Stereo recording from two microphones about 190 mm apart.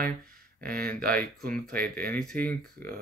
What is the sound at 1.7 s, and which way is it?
Speech, 50° right (ahead or behind).